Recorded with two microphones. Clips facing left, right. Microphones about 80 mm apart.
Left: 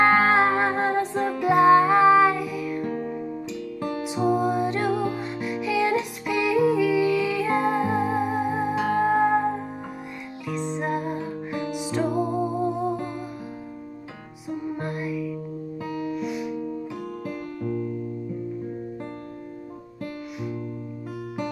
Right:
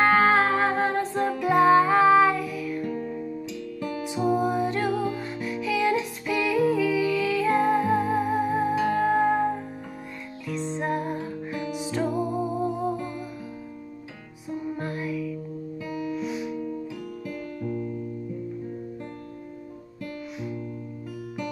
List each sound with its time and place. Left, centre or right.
0.0 s music: centre
2.8 s music: left
4.1 s music: left
8.7 s music: left
10.8 s music: centre
11.1 s music: centre
14.8 s music: centre
15.9 s music: left
16.2 s music: centre